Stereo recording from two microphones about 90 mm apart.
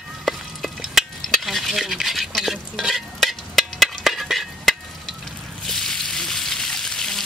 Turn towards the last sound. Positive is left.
turn(degrees=5)  # may be behind; listen again after turning